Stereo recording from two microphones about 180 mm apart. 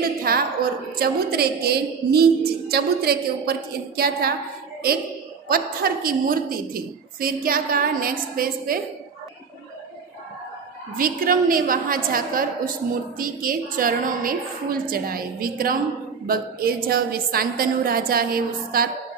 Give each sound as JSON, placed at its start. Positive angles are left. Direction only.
{"t": 0.0, "sound": "a sound", "side_deg": -55}
{"t": 0.9, "sound": "a woman's voice", "side_deg": -60}
{"t": 5.5, "sound": "a woman's voice", "side_deg": -55}
{"t": 11.0, "sound": "a woman's voice", "side_deg": -50}